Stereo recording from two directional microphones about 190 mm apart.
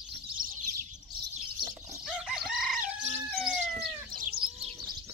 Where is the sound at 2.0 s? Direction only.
Centre (ahead or behind).